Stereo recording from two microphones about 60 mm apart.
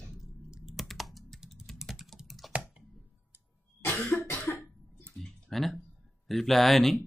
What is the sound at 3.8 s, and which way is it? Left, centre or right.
Cough, left.